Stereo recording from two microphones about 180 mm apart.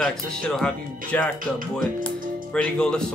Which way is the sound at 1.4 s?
50° right (ahead or behind).